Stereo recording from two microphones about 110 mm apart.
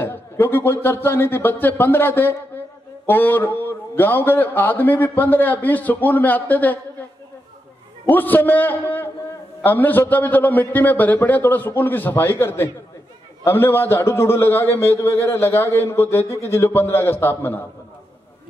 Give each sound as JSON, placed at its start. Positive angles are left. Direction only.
{"t": 0.0, "sound": "a man's voice", "side_deg": 20}
{"t": 8.1, "sound": "a man's voice", "side_deg": 15}